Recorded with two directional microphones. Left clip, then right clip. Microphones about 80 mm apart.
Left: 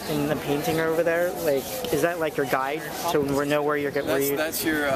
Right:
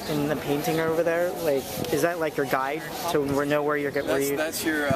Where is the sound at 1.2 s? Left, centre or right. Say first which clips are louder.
Left 1 dB; centre.